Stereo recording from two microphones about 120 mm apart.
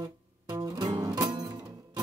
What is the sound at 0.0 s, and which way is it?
Music, 35° right (ahead or behind).